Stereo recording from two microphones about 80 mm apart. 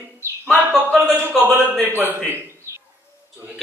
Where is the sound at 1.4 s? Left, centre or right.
Right.